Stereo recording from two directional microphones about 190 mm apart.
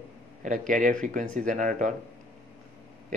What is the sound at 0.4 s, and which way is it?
Speech, 45° right (ahead or behind).